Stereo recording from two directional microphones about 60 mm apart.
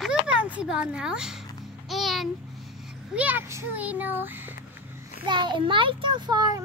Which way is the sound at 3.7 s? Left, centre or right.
Right.